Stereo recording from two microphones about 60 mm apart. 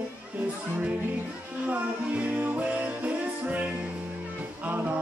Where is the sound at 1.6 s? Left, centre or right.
Right.